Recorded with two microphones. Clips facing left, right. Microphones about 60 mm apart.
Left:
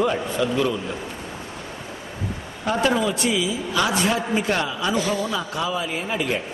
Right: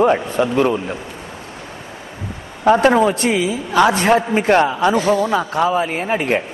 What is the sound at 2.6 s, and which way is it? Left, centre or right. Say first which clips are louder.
A man's voice: right 9 dB; right.